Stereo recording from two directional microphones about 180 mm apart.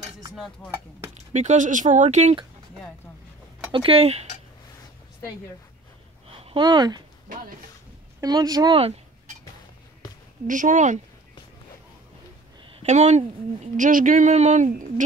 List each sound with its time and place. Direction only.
0.3 s speech: centre (ahead or behind)
1.1 s speech: 40° right (ahead or behind)
3.7 s speech: 30° right (ahead or behind)
6.3 s speech: 30° right (ahead or behind)
8.2 s speech: 20° right (ahead or behind)
10.4 s speech: 45° right (ahead or behind)
12.6 s speech: 40° right (ahead or behind)